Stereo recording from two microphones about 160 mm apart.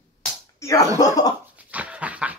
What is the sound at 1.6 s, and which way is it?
Dog, 10° right (ahead or behind).